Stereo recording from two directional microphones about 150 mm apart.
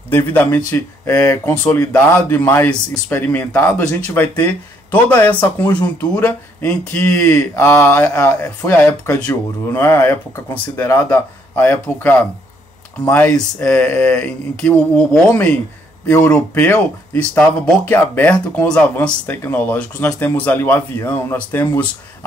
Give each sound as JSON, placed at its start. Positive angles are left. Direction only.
{"t": 0.1, "sound": "speech", "side_deg": 10}